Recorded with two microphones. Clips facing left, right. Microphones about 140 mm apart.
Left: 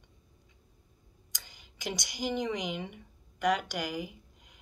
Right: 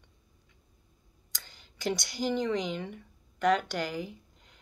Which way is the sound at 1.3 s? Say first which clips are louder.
Right 2 dB; 15° left (ahead or behind).